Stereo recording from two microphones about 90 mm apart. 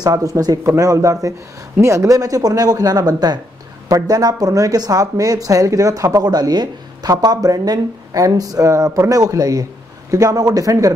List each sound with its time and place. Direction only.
0.0 s speech: 45° right (ahead or behind)